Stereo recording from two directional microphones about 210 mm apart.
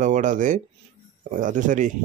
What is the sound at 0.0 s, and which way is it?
Speech, 35° right (ahead or behind).